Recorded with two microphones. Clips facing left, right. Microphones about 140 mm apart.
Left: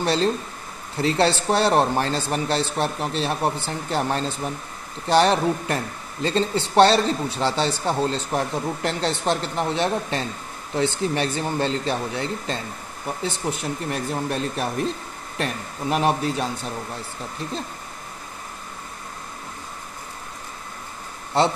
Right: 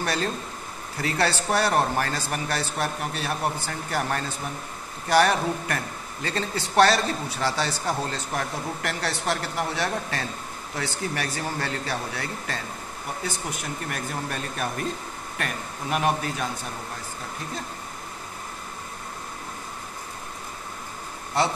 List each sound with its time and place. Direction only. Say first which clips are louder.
0.0 s speech: left 6 dB; 30° left (ahead or behind)